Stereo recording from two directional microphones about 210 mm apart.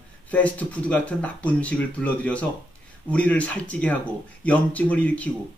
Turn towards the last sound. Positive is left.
turn(degrees=5)  # may be behind; listen again after turning